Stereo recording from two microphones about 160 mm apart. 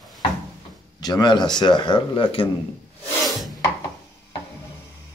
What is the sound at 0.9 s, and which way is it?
Speech, 25° left (ahead or behind).